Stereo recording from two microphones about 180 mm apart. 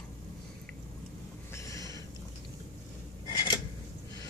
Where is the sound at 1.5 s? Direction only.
15° left (ahead or behind).